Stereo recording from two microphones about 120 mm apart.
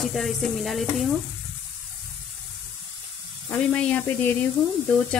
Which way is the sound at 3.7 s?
15° left (ahead or behind).